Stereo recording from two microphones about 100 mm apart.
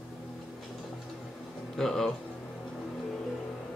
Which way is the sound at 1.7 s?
5° left (ahead or behind).